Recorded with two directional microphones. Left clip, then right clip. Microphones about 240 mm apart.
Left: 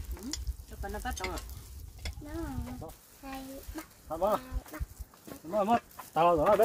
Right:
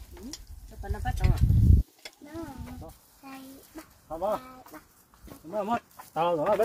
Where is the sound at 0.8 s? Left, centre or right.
Centre.